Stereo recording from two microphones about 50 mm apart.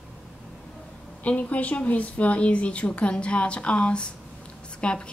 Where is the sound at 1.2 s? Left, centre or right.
Left.